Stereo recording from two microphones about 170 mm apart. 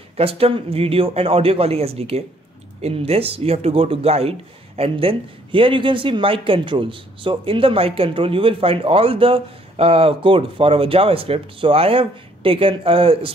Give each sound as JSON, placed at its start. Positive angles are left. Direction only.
{"t": 0.2, "sound": "speech", "side_deg": -35}